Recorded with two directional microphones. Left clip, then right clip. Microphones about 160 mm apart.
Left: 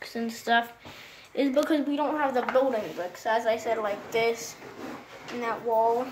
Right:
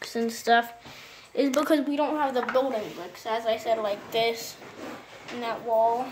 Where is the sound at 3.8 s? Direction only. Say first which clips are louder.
Even; 10° right (ahead or behind).